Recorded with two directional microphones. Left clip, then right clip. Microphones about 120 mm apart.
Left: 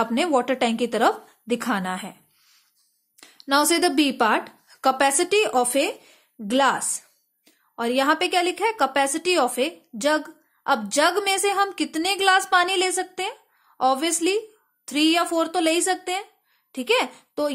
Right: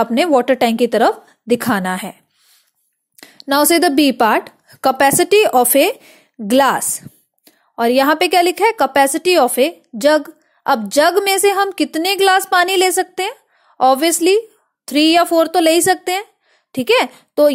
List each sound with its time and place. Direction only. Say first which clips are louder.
0.0 s a woman's voice: right 8 dB; 40° right (ahead or behind)
3.2 s a woman's voice: right 6 dB; 45° right (ahead or behind)